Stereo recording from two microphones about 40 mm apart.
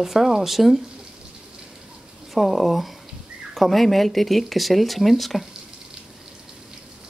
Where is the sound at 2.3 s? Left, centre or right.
Centre.